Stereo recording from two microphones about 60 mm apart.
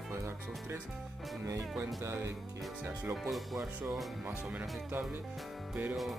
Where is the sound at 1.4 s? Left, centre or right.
Right.